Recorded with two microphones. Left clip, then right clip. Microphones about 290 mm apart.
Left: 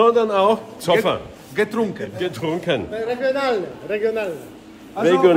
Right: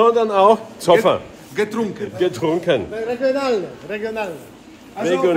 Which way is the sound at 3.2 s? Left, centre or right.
Right.